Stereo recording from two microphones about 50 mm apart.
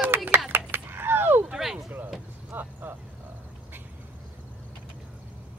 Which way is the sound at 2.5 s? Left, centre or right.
Right.